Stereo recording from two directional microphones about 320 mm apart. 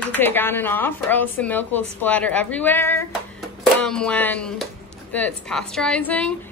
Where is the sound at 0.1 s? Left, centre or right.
Centre.